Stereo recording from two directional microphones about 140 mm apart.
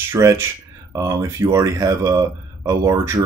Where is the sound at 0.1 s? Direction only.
25° right (ahead or behind).